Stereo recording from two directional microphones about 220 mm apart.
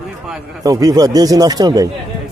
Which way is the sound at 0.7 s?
15° right (ahead or behind).